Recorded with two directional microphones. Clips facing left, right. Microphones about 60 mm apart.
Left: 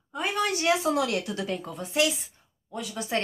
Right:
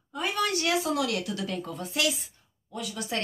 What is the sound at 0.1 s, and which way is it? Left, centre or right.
Speech, centre.